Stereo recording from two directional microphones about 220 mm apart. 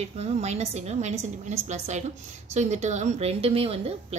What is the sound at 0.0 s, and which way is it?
A woman's voice, 30° right (ahead or behind).